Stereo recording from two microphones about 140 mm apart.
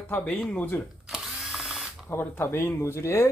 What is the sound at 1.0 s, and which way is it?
Drill, 5° right (ahead or behind).